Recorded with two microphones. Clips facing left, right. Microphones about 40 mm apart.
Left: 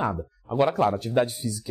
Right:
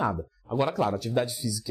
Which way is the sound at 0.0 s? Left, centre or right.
Centre.